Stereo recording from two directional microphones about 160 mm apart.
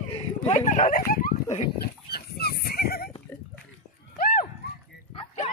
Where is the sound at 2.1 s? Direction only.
80° left.